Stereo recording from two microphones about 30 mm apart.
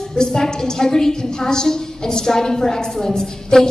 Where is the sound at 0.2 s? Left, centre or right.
Left.